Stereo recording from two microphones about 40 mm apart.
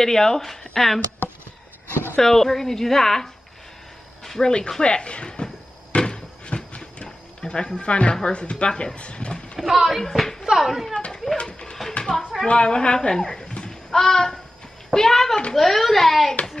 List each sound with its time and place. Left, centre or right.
0.0 s a woman's voice: centre
2.1 s a woman's voice: centre
4.2 s a sound: centre
4.5 s speech: centre
5.9 s cupboard open or close: left
7.8 s speech: left
9.6 s a child's voice: centre
10.0 s a woman's voice: centre
10.6 s a child's voice: centre
11.3 s speech: left
12.2 s a child's voice: centre
12.4 s a child's voice: left; by 16.3 s centre